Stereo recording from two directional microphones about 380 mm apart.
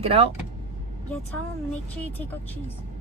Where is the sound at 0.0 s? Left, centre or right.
Centre.